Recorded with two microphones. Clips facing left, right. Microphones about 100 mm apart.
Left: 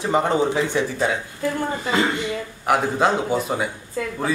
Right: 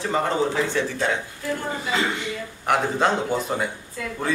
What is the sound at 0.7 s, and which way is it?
Speech, 10° left (ahead or behind).